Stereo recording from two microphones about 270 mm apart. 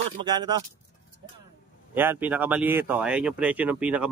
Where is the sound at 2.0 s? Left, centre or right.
Centre.